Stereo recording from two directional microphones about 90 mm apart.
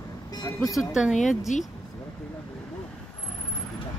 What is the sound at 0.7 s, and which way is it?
Speech, 5° right (ahead or behind).